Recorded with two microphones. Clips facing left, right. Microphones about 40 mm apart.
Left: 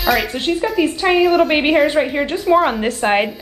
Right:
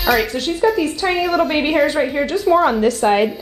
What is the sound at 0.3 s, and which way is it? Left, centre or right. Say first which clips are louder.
Speech: right 2 dB; left.